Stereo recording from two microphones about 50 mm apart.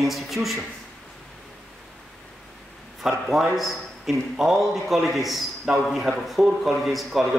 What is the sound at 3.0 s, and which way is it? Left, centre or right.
A man's voice, centre.